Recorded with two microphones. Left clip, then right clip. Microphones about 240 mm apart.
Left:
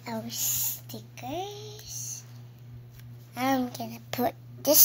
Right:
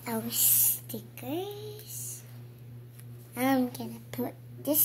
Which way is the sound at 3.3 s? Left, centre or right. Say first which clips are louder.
Even; centre.